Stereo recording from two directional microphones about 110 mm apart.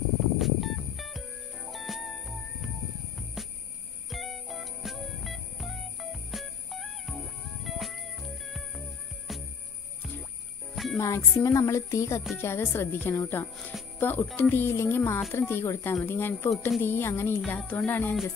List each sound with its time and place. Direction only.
0.4 s music: centre (ahead or behind)
10.7 s music: centre (ahead or behind)
11.0 s speech: 25° left (ahead or behind)
17.5 s music: 10° left (ahead or behind)